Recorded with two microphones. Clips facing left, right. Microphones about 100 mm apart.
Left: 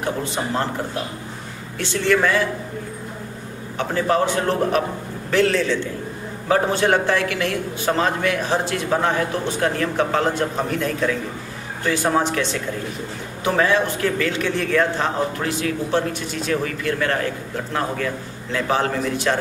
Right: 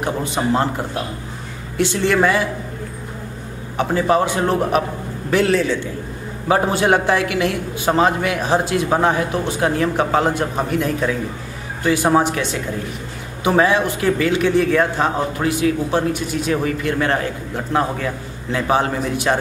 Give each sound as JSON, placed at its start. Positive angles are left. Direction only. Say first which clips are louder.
{"t": 0.0, "sound": "a man's voice", "louder": "right 3 dB", "side_deg": -20}
{"t": 1.8, "sound": "a man's voice", "louder": "right 3 dB", "side_deg": -15}
{"t": 3.7, "sound": "a man's voice", "louder": "right 3 dB", "side_deg": -15}